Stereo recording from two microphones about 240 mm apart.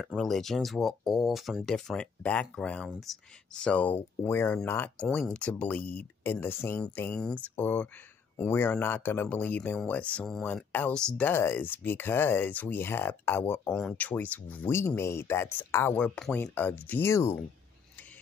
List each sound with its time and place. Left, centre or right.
0.0 s speech: centre